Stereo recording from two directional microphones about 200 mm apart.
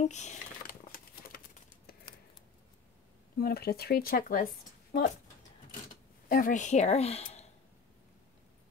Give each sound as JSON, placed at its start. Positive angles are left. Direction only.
{"t": 0.0, "sound": "speech", "side_deg": 35}
{"t": 0.9, "sound": "typewriter", "side_deg": 45}
{"t": 3.3, "sound": "speech", "side_deg": 50}
{"t": 6.2, "sound": "speech", "side_deg": 45}